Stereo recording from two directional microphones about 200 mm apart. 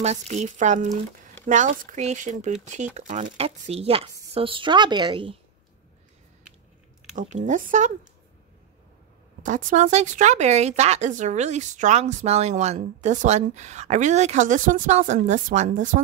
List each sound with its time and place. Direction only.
0.0 s a woman's voice: 35° right (ahead or behind)
7.2 s speech: 35° right (ahead or behind)
9.4 s speech: 40° right (ahead or behind)